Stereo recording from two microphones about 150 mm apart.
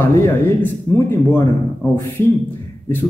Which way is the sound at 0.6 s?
15° left (ahead or behind).